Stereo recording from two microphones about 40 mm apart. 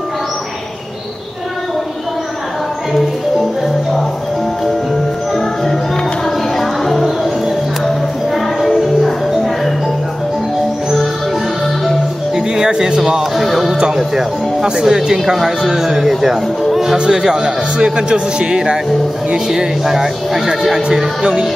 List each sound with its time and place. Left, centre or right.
6.6 s music: centre
8.5 s music: centre
12.4 s music: centre
13.4 s speech: centre
13.7 s a man's voice: centre